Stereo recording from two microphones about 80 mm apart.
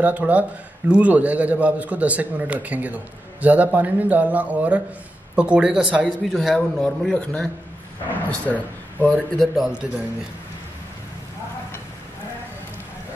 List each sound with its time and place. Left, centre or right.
0.0 s a man's voice: centre
6.8 s a man's voice: centre
9.4 s speech: centre